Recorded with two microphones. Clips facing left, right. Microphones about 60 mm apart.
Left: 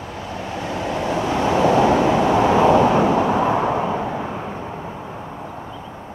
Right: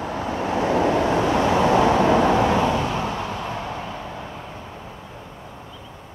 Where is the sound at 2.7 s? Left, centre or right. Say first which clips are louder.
Left 9 dB; left.